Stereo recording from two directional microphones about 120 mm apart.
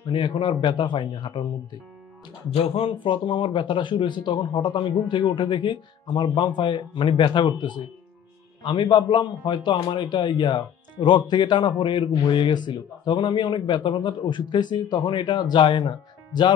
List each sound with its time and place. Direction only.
0.1 s speech: 40° left (ahead or behind)
2.5 s a man's voice: 55° left (ahead or behind)